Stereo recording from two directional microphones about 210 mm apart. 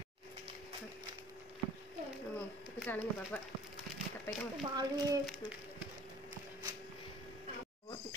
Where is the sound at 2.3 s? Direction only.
5° left (ahead or behind).